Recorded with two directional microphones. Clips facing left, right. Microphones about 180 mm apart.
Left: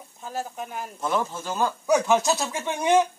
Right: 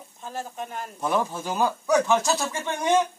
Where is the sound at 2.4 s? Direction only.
15° left (ahead or behind).